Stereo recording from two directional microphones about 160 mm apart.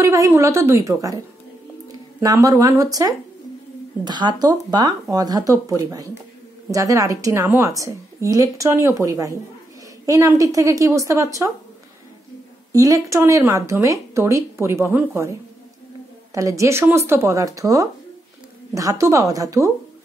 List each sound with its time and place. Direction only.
0.0 s a woman's voice: 20° right (ahead or behind)
12.7 s speech: 20° right (ahead or behind)
16.3 s a woman's voice: 20° right (ahead or behind)